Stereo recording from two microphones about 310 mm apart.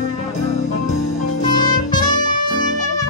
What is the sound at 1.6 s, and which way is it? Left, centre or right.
Music, centre.